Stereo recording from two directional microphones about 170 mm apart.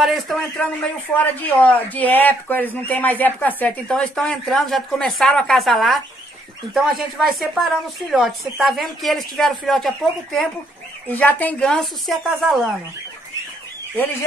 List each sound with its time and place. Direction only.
0.0 s a woman's voice: centre (ahead or behind)